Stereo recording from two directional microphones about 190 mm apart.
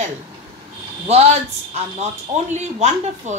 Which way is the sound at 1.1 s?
35° right (ahead or behind).